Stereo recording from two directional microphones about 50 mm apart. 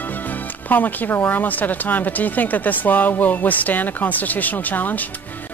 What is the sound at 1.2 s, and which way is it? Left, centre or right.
Speech, left.